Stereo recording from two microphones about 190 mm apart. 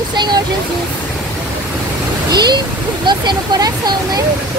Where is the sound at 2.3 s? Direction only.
20° right (ahead or behind).